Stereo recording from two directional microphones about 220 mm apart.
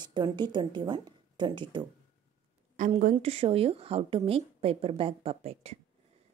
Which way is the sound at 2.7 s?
35° right (ahead or behind).